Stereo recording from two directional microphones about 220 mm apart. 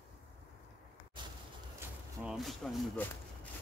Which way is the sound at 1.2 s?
20° right (ahead or behind).